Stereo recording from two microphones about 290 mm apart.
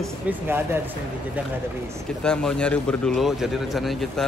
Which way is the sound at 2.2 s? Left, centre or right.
Centre.